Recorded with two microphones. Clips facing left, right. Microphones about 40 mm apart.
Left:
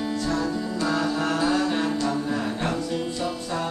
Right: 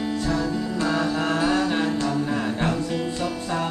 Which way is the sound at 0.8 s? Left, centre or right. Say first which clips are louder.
Right 1 dB; centre.